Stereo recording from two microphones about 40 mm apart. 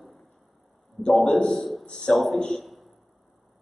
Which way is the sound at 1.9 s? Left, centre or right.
Centre.